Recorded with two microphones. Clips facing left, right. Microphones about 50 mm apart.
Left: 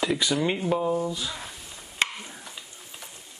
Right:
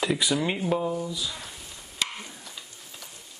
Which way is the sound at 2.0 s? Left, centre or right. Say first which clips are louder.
Left 5 dB; left.